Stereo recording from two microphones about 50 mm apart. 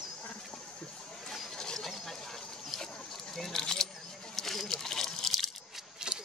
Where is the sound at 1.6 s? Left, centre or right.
Centre.